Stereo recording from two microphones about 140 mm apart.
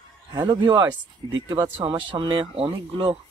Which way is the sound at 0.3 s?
30° right (ahead or behind).